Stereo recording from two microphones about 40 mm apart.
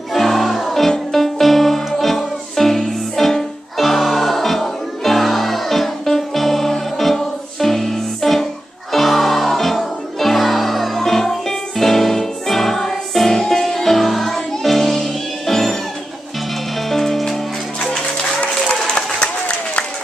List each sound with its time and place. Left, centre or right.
0.1 s music: centre
16.9 s music: centre
18.4 s applause: left